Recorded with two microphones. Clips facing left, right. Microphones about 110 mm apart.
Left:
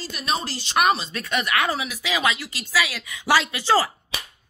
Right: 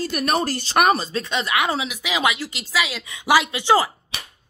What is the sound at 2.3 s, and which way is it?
Speech, 30° right (ahead or behind).